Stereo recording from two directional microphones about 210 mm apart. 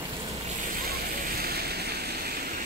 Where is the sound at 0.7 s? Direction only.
45° right (ahead or behind).